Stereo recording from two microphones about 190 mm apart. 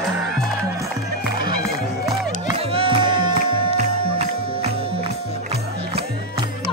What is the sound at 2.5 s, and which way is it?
Music, 30° right (ahead or behind).